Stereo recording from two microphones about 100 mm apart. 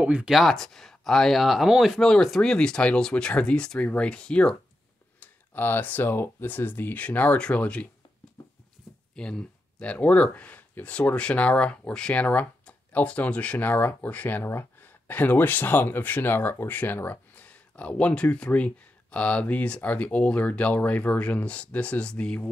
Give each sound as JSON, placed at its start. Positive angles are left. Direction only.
{"t": 0.0, "sound": "speech", "side_deg": -15}
{"t": 0.3, "sound": "speech", "side_deg": 0}
{"t": 5.2, "sound": "speech", "side_deg": 20}
{"t": 9.1, "sound": "speech", "side_deg": 10}